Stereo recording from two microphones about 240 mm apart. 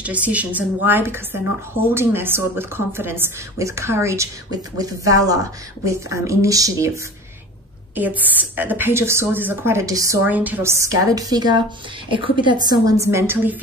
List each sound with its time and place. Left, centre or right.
0.0 s a woman's voice: centre
7.9 s a woman's voice: centre